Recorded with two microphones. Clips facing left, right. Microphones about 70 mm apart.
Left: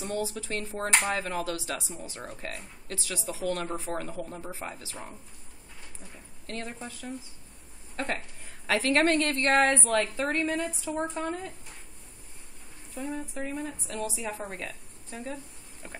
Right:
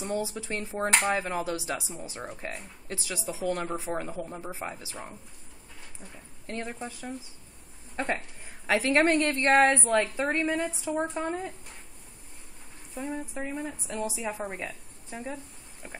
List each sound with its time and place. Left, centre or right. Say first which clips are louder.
0.0 s speech: right 1 dB; centre
6.4 s speech: right 2 dB; centre
12.9 s speech: even; centre
15.3 s a sound: right 1 dB; centre